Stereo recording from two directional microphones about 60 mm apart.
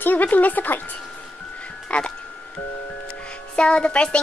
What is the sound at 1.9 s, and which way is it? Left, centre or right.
Speech, left.